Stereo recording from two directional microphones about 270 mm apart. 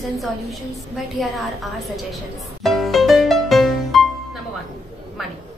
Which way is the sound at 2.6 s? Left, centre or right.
Centre.